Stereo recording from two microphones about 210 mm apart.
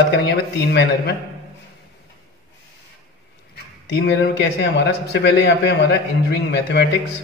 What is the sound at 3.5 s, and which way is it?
Speech, 50° left (ahead or behind).